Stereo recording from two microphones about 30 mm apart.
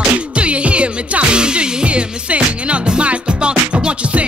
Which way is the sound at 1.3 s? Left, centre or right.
Right.